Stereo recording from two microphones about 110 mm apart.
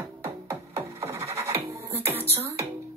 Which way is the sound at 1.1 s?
25° right (ahead or behind).